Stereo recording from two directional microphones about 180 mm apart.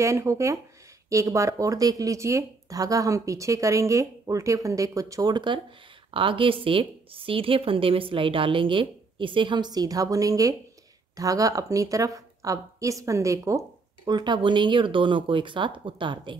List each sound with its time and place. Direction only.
0.0 s a woman's voice: 15° right (ahead or behind)